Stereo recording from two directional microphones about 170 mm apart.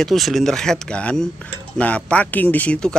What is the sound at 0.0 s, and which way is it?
Speech, centre (ahead or behind).